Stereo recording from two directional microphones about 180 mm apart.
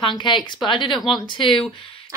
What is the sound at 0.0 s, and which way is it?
Speech, 25° left (ahead or behind).